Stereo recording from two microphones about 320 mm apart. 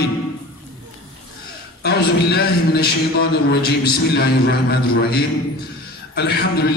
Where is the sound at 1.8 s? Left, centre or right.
Left.